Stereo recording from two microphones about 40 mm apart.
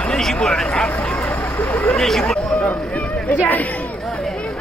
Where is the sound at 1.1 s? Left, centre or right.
Left.